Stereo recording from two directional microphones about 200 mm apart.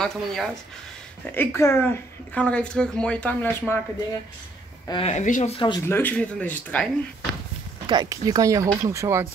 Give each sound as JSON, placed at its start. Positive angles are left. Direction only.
{"t": 0.0, "sound": "speech", "side_deg": 0}
{"t": 4.8, "sound": "speech", "side_deg": 30}
{"t": 5.8, "sound": "speech", "side_deg": 10}
{"t": 7.8, "sound": "speech", "side_deg": -20}